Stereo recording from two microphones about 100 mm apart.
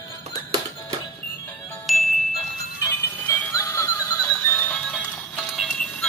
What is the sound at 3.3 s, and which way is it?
Music, 30° left (ahead or behind).